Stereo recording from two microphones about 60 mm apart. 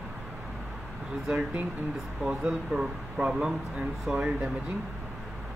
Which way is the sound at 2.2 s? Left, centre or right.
Centre.